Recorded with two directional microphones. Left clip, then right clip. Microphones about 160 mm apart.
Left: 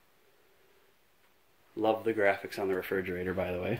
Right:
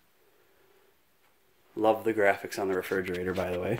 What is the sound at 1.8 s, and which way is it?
Speech, 15° right (ahead or behind).